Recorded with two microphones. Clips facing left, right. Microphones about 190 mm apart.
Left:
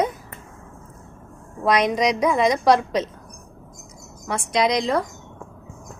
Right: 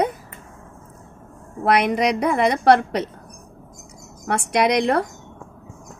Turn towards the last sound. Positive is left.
turn(degrees=-60)  # may be behind; listen again after turning